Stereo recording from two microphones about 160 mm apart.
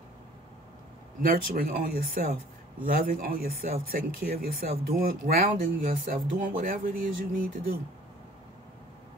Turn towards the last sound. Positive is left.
turn(degrees=-60)  # may be behind; listen again after turning